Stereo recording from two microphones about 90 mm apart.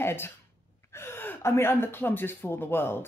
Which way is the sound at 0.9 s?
25° left (ahead or behind).